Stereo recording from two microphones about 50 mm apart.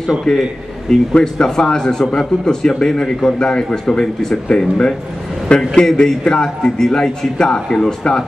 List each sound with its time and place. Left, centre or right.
0.3 s a man's voice: centre